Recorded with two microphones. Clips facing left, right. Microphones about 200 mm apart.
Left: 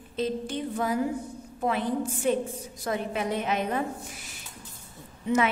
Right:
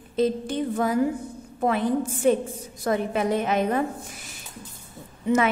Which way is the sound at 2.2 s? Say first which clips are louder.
Right 5 dB; 45° right (ahead or behind).